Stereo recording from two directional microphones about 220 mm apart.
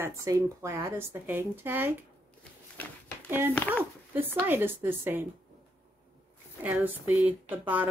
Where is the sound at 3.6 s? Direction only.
5° left (ahead or behind).